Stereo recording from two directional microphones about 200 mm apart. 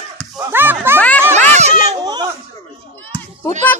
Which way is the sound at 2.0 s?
20° right (ahead or behind).